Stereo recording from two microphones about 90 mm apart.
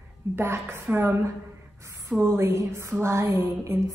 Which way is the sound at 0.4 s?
25° right (ahead or behind).